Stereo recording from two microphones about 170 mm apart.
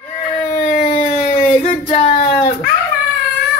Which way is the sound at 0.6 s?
70° left (ahead or behind).